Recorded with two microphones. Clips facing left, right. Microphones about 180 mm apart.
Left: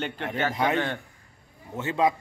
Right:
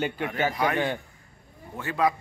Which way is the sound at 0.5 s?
25° left (ahead or behind).